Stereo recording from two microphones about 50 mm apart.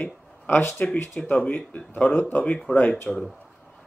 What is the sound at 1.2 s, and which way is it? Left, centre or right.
Speech, left.